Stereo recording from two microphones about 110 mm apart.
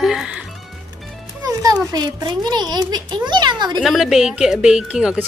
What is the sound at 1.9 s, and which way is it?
A child's voice, 40° right (ahead or behind).